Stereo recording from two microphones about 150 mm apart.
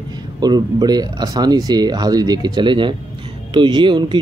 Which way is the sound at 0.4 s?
25° right (ahead or behind).